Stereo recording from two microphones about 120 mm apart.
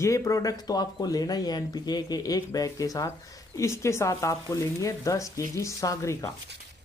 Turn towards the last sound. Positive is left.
turn(degrees=30)  # may be behind; listen again after turning